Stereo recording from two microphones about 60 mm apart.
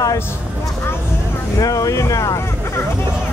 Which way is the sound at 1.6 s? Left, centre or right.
Left.